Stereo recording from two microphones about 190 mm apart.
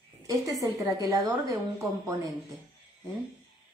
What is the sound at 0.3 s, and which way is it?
A woman's voice, 20° right (ahead or behind).